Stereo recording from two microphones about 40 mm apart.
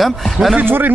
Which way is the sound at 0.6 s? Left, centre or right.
Right.